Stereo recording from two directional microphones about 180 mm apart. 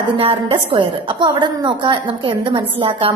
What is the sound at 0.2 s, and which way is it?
A woman's voice, 30° right (ahead or behind).